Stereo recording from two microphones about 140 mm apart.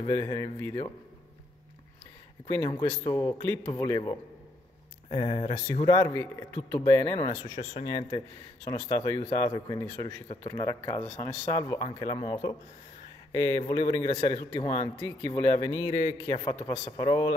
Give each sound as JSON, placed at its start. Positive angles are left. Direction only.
{"t": 0.0, "sound": "a man's voice", "side_deg": 25}
{"t": 2.5, "sound": "a man's voice", "side_deg": 20}
{"t": 5.1, "sound": "speech", "side_deg": 40}
{"t": 5.9, "sound": "a man's voice", "side_deg": 20}
{"t": 16.9, "sound": "a man's voice", "side_deg": 30}